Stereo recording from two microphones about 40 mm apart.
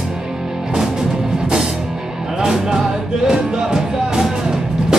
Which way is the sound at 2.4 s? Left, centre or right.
Centre.